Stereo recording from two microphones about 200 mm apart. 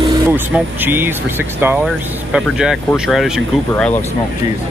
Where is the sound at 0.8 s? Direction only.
10° right (ahead or behind).